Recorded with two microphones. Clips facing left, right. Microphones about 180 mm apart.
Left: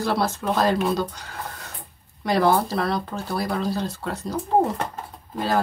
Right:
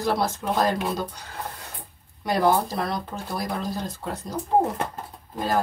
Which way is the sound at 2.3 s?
15° right (ahead or behind).